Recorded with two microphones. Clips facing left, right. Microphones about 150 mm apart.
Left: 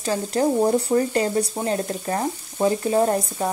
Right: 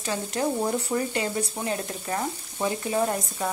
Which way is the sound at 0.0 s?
35° left (ahead or behind).